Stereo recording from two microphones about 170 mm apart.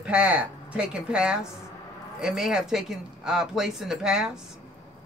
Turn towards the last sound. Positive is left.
turn(degrees=-5)  # may be behind; listen again after turning